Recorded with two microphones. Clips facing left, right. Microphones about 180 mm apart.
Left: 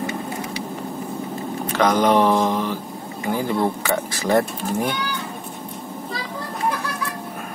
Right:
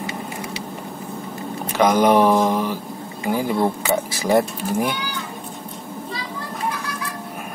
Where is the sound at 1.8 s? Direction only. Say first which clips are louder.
Right 2 dB; 10° right (ahead or behind).